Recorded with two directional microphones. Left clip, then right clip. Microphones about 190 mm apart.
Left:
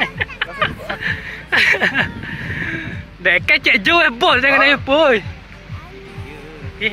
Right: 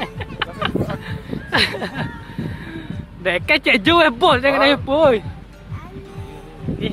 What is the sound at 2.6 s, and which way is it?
Speech, centre (ahead or behind).